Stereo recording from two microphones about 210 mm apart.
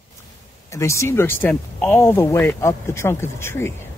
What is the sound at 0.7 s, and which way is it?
Speech, 15° left (ahead or behind).